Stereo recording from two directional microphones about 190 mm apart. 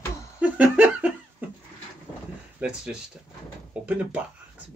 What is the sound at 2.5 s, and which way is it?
Speech, 5° right (ahead or behind).